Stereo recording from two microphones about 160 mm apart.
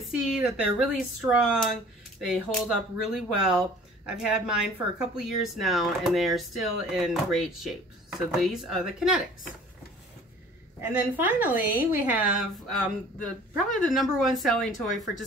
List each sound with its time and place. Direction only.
0.1 s speech: 5° right (ahead or behind)
10.8 s a woman's voice: 10° right (ahead or behind)
13.2 s speech: 5° left (ahead or behind)